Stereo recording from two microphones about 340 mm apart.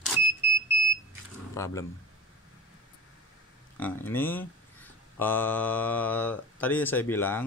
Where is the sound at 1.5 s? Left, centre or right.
Centre.